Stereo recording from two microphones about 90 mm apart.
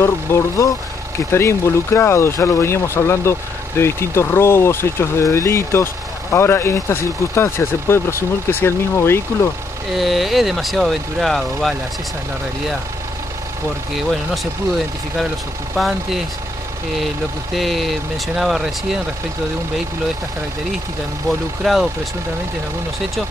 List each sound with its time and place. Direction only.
0.0 s speech: 35° left (ahead or behind)
9.9 s speech: centre (ahead or behind)
15.7 s speech: centre (ahead or behind)
17.6 s speech: centre (ahead or behind)
21.3 s speech: centre (ahead or behind)